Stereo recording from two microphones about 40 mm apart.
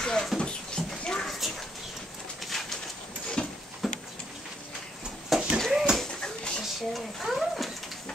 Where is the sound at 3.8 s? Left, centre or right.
Centre.